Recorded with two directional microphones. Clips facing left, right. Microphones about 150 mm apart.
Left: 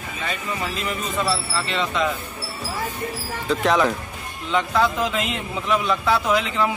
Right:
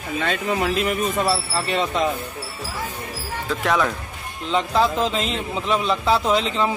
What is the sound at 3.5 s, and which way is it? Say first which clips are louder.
Speech: left 2 dB; centre (ahead or behind).